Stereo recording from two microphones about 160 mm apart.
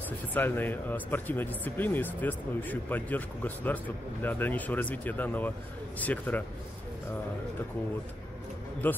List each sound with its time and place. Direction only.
0.3 s speech: 10° left (ahead or behind)
8.8 s speech: 10° left (ahead or behind)